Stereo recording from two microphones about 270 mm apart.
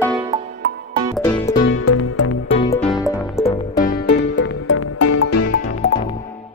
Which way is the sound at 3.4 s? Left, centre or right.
Left.